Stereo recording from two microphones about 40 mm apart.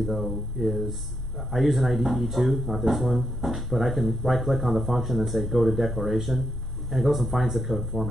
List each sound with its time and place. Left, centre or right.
0.1 s speech: centre